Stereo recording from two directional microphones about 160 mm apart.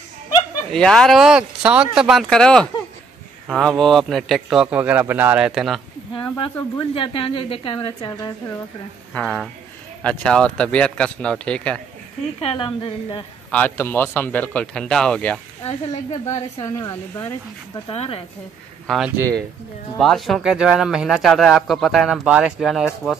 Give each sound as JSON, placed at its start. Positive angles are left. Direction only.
{"t": 0.7, "sound": "speech", "side_deg": 5}
{"t": 6.8, "sound": "a woman's voice", "side_deg": 35}
{"t": 9.1, "sound": "speech", "side_deg": 5}
{"t": 12.4, "sound": "a woman's voice", "side_deg": 35}
{"t": 13.5, "sound": "speech", "side_deg": 10}
{"t": 15.6, "sound": "a woman's voice", "side_deg": 40}
{"t": 16.6, "sound": "speech", "side_deg": 20}
{"t": 17.7, "sound": "a woman's voice", "side_deg": 35}
{"t": 18.9, "sound": "speech", "side_deg": -5}